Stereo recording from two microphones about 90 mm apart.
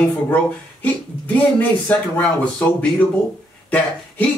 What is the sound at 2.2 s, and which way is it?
Speech, 15° left (ahead or behind).